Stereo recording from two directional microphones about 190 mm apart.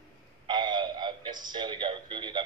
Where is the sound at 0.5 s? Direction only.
25° right (ahead or behind).